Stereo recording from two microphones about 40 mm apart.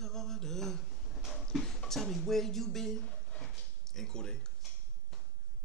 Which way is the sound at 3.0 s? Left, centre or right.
Left.